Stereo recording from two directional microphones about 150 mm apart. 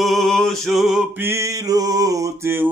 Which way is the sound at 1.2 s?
20° right (ahead or behind).